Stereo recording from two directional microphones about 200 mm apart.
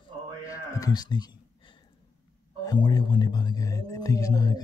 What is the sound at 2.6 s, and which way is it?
Speech, 20° left (ahead or behind).